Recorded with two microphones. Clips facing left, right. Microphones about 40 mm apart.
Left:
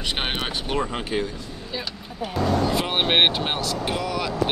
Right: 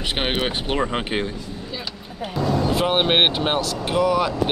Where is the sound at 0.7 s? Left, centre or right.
Right.